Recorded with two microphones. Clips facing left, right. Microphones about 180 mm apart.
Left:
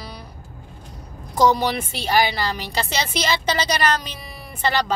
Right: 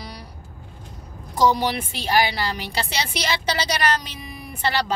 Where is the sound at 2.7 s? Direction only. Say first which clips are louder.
Left 2 dB; 10° right (ahead or behind).